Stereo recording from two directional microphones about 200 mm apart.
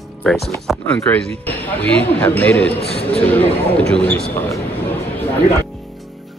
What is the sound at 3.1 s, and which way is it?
Speech, 5° left (ahead or behind).